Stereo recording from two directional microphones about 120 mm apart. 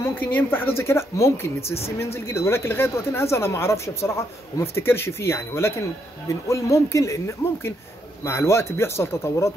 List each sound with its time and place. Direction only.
0.0 s speech: 15° left (ahead or behind)